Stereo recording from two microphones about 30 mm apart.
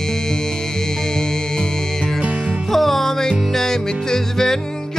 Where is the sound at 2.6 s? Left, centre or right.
Centre.